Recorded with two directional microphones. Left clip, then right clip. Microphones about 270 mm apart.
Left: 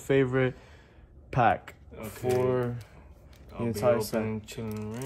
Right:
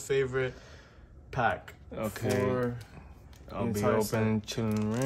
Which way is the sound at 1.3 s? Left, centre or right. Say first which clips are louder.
Left 5 dB; left.